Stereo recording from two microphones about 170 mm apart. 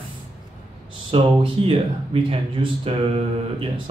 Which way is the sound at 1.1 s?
30° right (ahead or behind).